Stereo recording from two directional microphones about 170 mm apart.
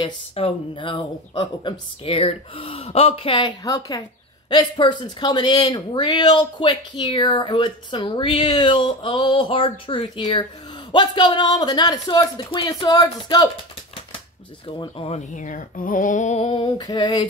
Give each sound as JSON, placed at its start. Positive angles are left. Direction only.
{"t": 0.0, "sound": "speech", "side_deg": 30}
{"t": 14.8, "sound": "speech", "side_deg": 35}